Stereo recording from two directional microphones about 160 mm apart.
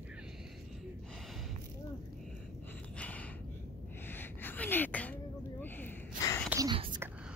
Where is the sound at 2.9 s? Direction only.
10° left (ahead or behind).